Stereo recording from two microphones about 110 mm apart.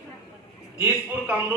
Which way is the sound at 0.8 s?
15° right (ahead or behind).